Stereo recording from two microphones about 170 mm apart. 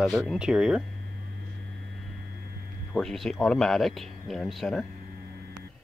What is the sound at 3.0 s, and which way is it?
Speech, 5° left (ahead or behind).